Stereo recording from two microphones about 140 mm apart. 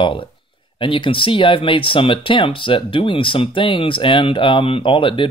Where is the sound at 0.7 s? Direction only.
35° left (ahead or behind).